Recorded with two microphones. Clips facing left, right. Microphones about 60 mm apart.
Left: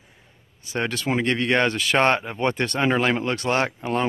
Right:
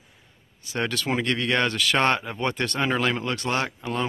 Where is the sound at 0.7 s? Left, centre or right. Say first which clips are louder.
Left 2 dB; left.